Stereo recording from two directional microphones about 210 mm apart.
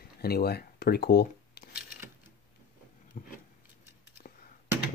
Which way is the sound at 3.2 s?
40° left (ahead or behind).